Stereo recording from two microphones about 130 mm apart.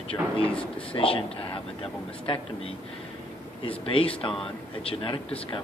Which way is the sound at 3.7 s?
45° left (ahead or behind).